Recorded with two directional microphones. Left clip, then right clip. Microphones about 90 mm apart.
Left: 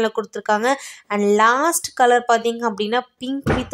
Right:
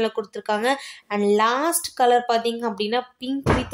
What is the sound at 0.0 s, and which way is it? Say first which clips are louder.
Speech: left 3 dB; 45° left (ahead or behind).